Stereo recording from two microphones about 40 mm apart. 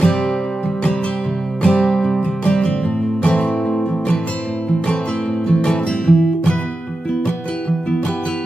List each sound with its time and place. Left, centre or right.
0.0 s music: centre
1.6 s music: left
5.5 s music: left